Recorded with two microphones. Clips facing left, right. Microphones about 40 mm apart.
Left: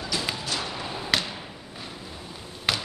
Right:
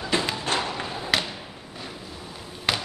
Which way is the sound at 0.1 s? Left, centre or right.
Right.